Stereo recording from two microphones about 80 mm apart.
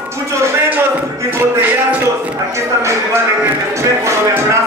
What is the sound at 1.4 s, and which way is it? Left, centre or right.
Music, right.